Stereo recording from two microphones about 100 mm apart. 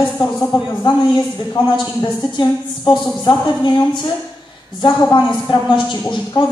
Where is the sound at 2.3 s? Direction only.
45° left (ahead or behind).